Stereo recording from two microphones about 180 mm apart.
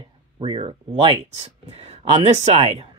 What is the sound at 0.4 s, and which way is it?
Speech, 30° right (ahead or behind).